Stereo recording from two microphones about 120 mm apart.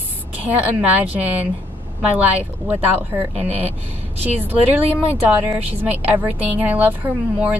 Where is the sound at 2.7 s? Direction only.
15° right (ahead or behind).